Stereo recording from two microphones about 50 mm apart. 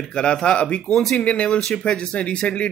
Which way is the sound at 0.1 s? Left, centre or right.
Centre.